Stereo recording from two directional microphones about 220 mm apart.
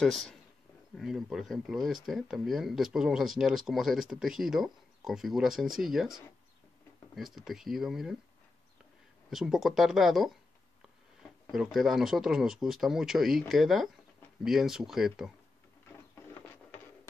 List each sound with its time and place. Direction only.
0.0 s speech: 5° left (ahead or behind)
7.2 s speech: centre (ahead or behind)
9.3 s speech: centre (ahead or behind)
11.5 s speech: centre (ahead or behind)